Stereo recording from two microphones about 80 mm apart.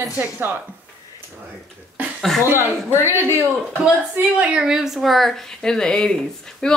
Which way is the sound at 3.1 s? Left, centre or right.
Right.